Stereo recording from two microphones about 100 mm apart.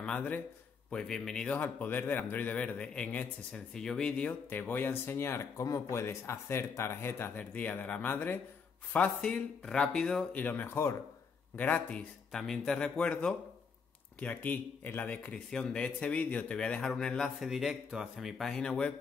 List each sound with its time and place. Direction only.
0.0 s a man's voice: 10° left (ahead or behind)
1.5 s a man's voice: 20° left (ahead or behind)
10.4 s a man's voice: 20° left (ahead or behind)